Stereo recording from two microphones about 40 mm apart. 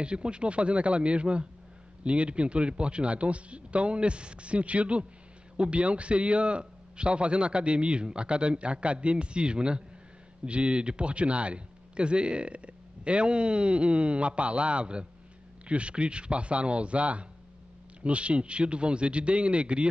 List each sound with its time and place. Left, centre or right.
0.0 s a man's voice: right